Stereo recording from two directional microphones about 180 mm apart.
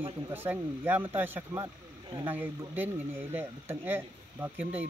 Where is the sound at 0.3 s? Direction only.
10° right (ahead or behind).